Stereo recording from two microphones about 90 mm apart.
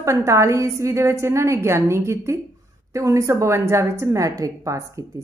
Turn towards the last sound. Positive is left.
turn(degrees=-35)  # may be behind; listen again after turning